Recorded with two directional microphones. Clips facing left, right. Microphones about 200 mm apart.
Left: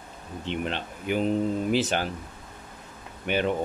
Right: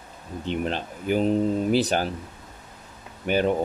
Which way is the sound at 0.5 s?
40° right (ahead or behind).